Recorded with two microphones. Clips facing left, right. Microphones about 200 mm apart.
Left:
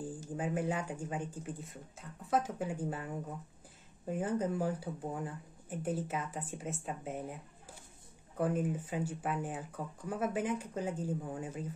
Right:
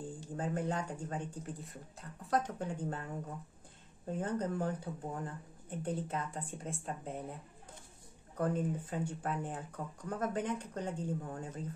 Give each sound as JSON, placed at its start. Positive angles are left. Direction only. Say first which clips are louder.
{"t": 0.4, "sound": "speech", "louder": "left 1 dB", "side_deg": 10}
{"t": 8.4, "sound": "speech", "louder": "left 1 dB", "side_deg": 10}